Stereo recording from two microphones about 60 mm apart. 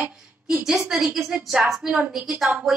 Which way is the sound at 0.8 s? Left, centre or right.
Centre.